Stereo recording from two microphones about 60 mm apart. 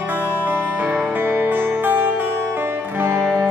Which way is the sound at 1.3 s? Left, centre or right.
Right.